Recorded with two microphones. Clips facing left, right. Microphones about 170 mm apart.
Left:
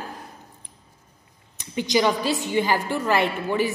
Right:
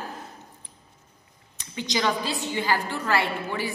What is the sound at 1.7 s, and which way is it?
A woman's voice, 15° left (ahead or behind).